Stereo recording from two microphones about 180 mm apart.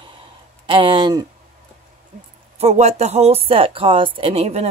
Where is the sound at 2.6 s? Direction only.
35° right (ahead or behind).